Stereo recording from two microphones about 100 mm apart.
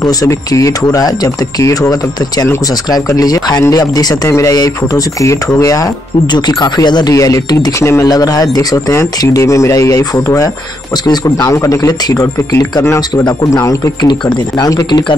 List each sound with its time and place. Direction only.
0.0 s speech: 35° left (ahead or behind)
7.2 s speech: 35° left (ahead or behind)
14.0 s speech: 50° left (ahead or behind)